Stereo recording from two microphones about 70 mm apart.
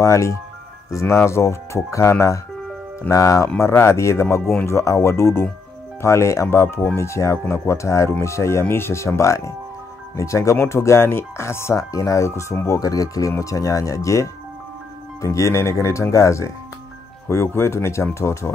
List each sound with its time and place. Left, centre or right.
0.0 s speech: left
3.4 s speech: left